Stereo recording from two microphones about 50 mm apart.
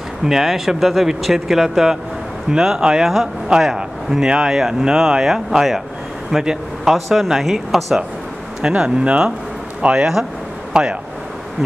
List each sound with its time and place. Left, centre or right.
0.2 s a man's voice: centre
8.6 s a man's voice: centre